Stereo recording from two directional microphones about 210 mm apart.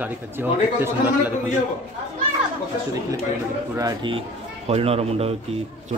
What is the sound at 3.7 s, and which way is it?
Speech, 20° right (ahead or behind).